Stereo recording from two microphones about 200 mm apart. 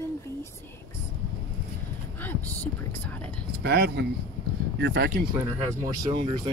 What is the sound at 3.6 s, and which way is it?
Speech, 55° right (ahead or behind).